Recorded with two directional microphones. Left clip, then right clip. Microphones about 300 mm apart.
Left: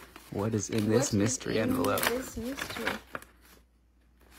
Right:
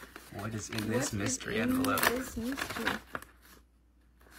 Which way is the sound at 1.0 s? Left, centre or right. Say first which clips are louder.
Left 5 dB; centre.